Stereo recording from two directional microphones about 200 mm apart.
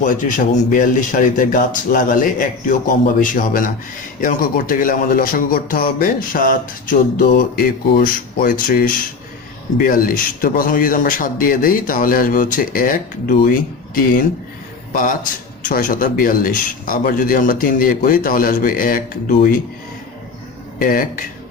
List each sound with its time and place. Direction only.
0.0 s a man's voice: 40° left (ahead or behind)
20.8 s a man's voice: 45° left (ahead or behind)